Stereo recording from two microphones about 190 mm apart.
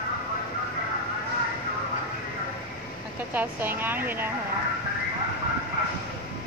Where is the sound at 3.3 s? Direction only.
10° right (ahead or behind).